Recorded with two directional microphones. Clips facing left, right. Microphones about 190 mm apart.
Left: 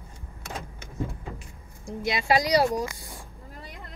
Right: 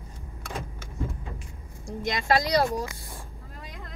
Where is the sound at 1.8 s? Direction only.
10° left (ahead or behind).